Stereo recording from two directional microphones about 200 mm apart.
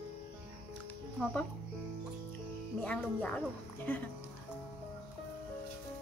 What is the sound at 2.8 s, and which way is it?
A woman's voice, 5° left (ahead or behind).